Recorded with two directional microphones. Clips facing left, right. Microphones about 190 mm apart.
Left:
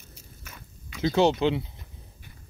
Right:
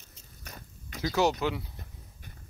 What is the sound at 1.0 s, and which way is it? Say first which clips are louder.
Speech: left 5 dB; 25° left (ahead or behind).